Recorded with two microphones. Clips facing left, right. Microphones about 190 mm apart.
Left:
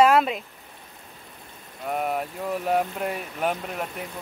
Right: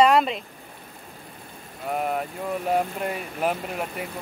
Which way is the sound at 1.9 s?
Centre (ahead or behind).